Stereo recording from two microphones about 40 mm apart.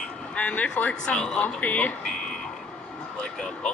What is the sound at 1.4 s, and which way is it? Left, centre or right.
Speech, left.